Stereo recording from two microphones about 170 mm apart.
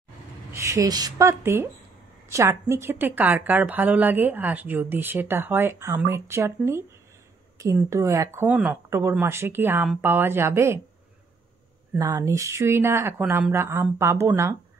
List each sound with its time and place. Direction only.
0.5 s speech: 15° right (ahead or behind)
12.0 s speech: 15° right (ahead or behind)